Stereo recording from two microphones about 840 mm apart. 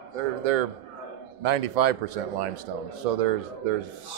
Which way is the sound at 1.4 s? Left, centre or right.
Right.